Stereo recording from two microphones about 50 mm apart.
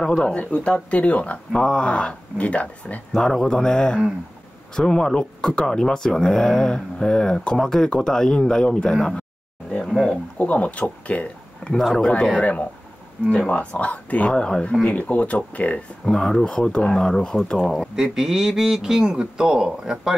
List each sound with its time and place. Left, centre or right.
0.0 s speech: left
3.1 s speech: centre
9.8 s speech: centre
10.4 s speech: left
11.7 s speech: centre
12.4 s speech: left; by 14.8 s centre
14.8 s speech: left
16.1 s speech: centre
17.6 s speech: centre